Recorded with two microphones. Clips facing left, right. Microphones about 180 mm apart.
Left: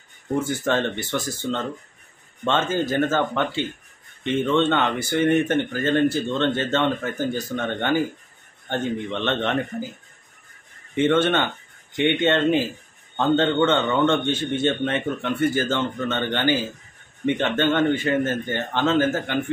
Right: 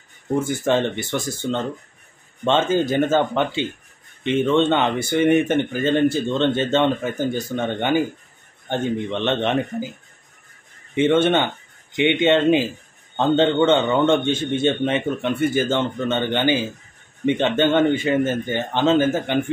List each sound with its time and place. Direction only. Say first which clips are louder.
0.7 s a man's voice: right 3 dB; 15° right (ahead or behind)
11.0 s a man's voice: right 2 dB; 20° right (ahead or behind)